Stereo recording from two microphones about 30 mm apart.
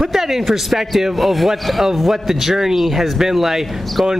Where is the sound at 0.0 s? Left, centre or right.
Centre.